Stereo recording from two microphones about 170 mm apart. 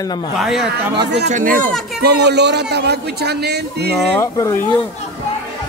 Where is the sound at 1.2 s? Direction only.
50° right (ahead or behind).